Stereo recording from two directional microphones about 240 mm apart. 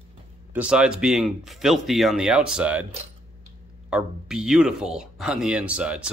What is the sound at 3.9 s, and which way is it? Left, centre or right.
Speech, centre.